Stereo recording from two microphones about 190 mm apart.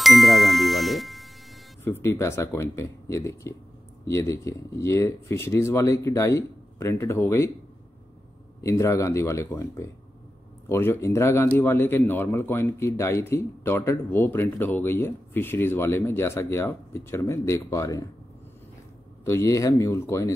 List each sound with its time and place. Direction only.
0.0 s ding: centre (ahead or behind)
1.9 s a man's voice: 15° left (ahead or behind)
8.5 s a man's voice: 15° left (ahead or behind)
19.2 s a man's voice: 15° left (ahead or behind)